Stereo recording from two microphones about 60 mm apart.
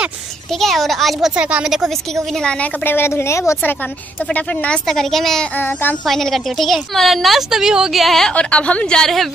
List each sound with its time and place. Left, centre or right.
0.5 s a woman's voice: centre
1.3 s speech: centre
1.7 s a woman's voice: centre
2.3 s a woman's voice: centre
2.8 s speech: left
3.6 s a woman's voice: left
4.8 s a woman's voice: centre
5.5 s a child's voice: left
6.0 s a woman's voice: centre
8.3 s a woman's voice: centre